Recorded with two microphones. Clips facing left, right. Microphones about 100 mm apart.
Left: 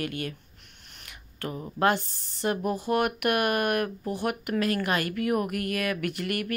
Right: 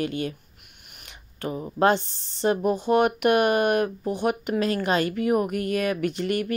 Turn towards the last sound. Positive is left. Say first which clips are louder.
# right 5 dB
turn(degrees=-25)  # may be behind; listen again after turning